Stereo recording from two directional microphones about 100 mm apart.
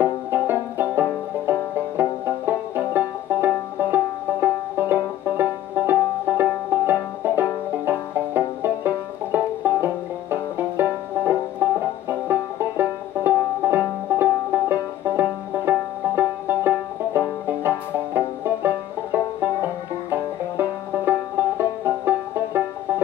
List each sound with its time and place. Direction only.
0.0 s banjo: 20° right (ahead or behind)